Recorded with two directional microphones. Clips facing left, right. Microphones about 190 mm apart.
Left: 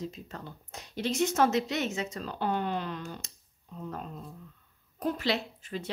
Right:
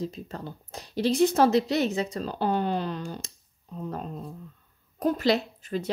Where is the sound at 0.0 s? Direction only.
35° right (ahead or behind).